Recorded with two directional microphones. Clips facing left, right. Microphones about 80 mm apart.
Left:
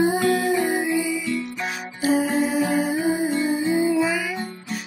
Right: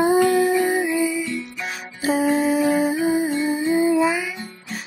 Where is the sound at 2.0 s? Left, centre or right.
Right.